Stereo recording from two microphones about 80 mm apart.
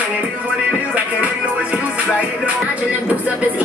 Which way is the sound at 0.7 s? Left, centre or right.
Centre.